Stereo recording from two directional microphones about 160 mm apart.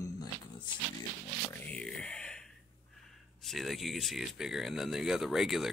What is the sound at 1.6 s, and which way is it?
Speech, 5° left (ahead or behind).